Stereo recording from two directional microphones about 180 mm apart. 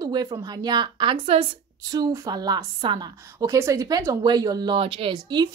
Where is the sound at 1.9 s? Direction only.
20° right (ahead or behind).